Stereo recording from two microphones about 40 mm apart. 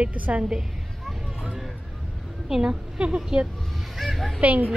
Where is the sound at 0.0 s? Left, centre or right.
Right.